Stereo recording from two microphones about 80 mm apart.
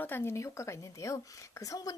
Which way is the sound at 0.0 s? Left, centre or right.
Left.